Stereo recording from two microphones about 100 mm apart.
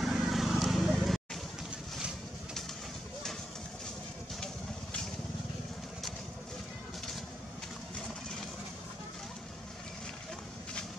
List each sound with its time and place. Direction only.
0.0 s vehicle: 5° right (ahead or behind)